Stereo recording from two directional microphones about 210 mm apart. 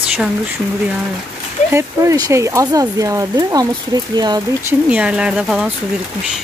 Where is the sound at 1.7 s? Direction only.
15° right (ahead or behind).